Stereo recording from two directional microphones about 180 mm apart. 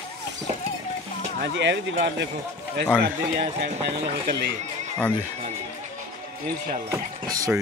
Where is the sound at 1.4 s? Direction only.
75° right (ahead or behind).